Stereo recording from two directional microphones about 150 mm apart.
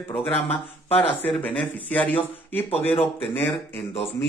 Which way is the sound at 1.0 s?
10° left (ahead or behind).